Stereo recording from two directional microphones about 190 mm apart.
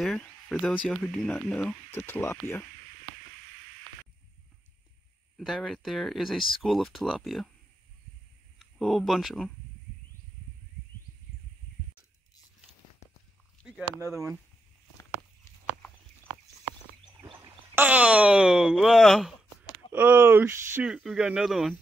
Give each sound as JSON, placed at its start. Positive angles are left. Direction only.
{"t": 0.0, "sound": "speech", "side_deg": 5}
{"t": 5.4, "sound": "speech", "side_deg": 0}
{"t": 8.5, "sound": "speech", "side_deg": 0}
{"t": 13.6, "sound": "a sound", "side_deg": -5}
{"t": 13.9, "sound": "speech", "side_deg": -15}
{"t": 17.7, "sound": "speech", "side_deg": -5}
{"t": 19.9, "sound": "speech", "side_deg": -10}